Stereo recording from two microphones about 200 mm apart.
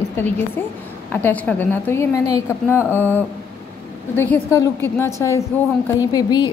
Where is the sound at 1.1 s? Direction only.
10° left (ahead or behind).